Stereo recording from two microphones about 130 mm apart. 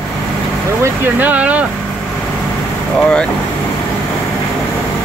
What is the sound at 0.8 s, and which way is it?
Speech, 15° right (ahead or behind).